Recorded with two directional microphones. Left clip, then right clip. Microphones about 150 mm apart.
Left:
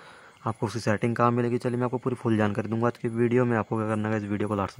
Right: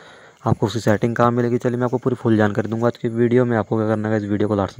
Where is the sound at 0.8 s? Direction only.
35° right (ahead or behind).